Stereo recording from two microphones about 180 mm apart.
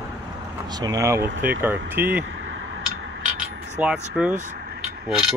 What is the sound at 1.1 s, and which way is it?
Speech, 70° right (ahead or behind).